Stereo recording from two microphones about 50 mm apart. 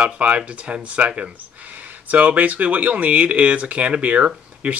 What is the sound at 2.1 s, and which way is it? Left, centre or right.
Speech, right.